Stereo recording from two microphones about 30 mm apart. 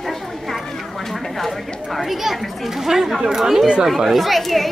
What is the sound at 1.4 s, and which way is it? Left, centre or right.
Speech, centre.